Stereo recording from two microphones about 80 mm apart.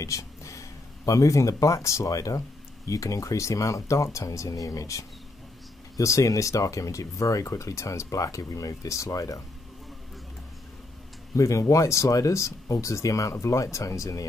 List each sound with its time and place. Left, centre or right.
0.0 s speech: left
11.3 s speech: left